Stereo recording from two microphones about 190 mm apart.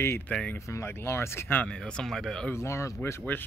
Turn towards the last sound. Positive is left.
turn(degrees=10)  # may be behind; listen again after turning